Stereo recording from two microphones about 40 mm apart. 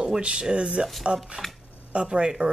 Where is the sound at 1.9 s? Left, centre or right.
Right.